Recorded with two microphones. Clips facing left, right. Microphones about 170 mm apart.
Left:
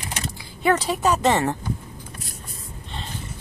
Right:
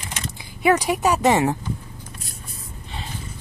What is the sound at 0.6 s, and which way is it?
Speech, 10° right (ahead or behind).